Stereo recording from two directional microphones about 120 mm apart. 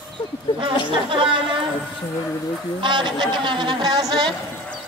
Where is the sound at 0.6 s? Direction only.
45° right (ahead or behind).